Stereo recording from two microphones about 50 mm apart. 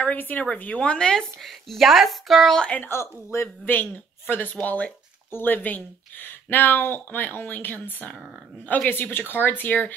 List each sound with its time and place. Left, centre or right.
0.0 s speech: left
0.7 s speech: centre
1.4 s speech: centre
2.5 s speech: centre
2.8 s speech: left
3.6 s speech: left
5.3 s speech: left